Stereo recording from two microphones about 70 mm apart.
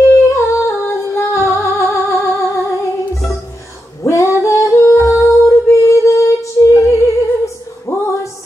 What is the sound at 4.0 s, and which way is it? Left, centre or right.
Female singing, left.